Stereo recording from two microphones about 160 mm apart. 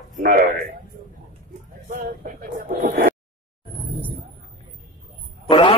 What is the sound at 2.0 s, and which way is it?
Speech, 65° right (ahead or behind).